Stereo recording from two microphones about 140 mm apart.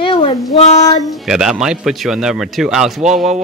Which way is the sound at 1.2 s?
5° right (ahead or behind).